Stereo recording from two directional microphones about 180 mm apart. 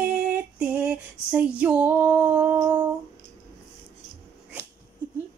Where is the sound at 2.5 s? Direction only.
20° right (ahead or behind).